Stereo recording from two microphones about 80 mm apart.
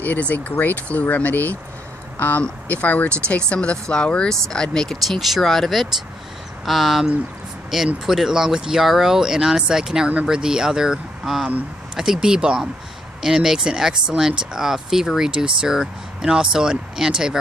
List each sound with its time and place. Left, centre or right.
0.0 s speech: left; by 17.4 s centre